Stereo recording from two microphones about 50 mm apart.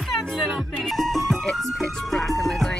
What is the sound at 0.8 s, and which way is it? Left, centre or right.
Music, centre.